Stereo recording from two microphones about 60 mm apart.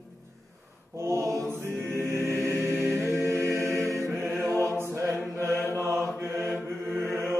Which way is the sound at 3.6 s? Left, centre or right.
Right.